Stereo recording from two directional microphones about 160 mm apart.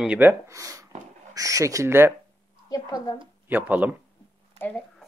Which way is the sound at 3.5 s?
10° right (ahead or behind).